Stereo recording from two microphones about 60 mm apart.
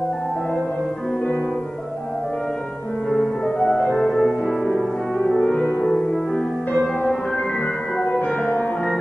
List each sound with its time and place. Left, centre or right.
3.1 s music: centre
3.8 s music: centre
5.8 s music: centre
8.2 s music: left